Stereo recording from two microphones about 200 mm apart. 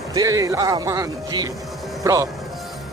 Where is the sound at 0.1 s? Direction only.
15° right (ahead or behind).